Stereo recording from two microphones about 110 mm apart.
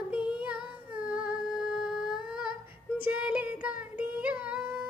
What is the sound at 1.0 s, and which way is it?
Humming, 10° right (ahead or behind).